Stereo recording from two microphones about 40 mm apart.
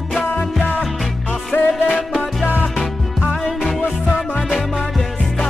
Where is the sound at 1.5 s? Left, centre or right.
Left.